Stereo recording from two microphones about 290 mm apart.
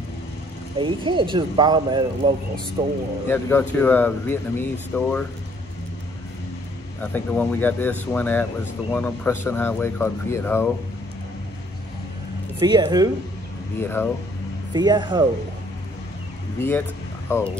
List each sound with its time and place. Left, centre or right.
0.7 s speech: centre
3.3 s speech: centre
7.0 s speech: centre
12.6 s speech: centre
13.7 s speech: centre
14.7 s speech: centre
17.3 s speech: centre